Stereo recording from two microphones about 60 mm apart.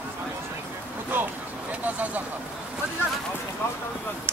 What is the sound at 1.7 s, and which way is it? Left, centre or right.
Vehicle, right.